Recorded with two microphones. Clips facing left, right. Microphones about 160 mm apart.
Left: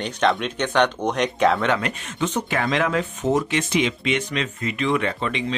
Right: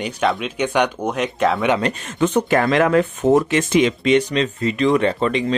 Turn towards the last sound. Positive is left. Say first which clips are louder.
# right 6 dB
turn(degrees=-40)  # may be behind; listen again after turning